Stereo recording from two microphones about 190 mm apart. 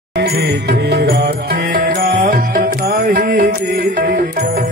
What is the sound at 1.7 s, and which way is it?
Music, 50° right (ahead or behind).